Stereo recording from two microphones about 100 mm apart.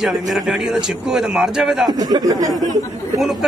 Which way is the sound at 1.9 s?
40° right (ahead or behind).